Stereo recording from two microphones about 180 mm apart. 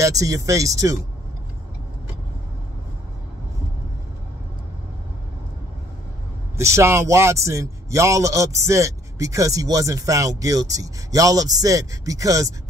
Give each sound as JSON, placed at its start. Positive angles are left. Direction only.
{"t": 0.0, "sound": "a man's voice", "side_deg": -20}
{"t": 6.5, "sound": "a man's voice", "side_deg": -15}